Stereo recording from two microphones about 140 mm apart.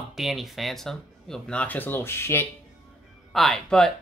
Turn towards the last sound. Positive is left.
turn(degrees=5)  # may be behind; listen again after turning